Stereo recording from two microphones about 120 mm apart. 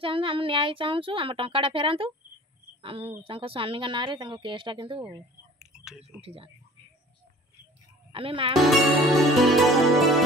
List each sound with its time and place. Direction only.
0.0 s speech: 50° right (ahead or behind)
5.6 s whispering: 5° right (ahead or behind)
6.2 s speech: 55° right (ahead or behind)
8.1 s speech: 50° right (ahead or behind)
8.5 s music: centre (ahead or behind)